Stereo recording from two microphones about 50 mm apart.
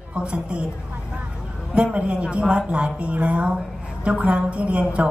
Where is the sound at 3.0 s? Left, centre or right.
Right.